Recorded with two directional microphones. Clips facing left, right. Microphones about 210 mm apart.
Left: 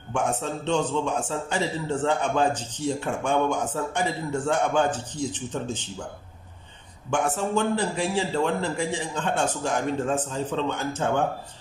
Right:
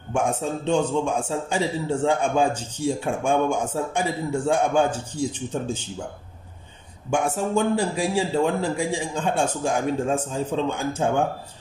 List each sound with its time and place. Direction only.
0.1 s a man's voice: 10° right (ahead or behind)
7.1 s a man's voice: 10° right (ahead or behind)